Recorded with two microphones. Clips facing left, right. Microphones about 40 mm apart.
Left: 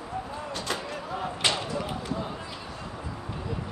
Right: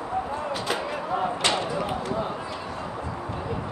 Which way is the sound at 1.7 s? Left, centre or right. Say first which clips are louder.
Right 4 dB; centre.